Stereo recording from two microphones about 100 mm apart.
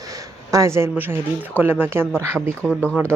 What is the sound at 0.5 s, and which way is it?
Speech, 30° right (ahead or behind).